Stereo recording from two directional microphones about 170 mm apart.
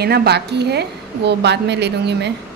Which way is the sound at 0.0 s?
70° right (ahead or behind).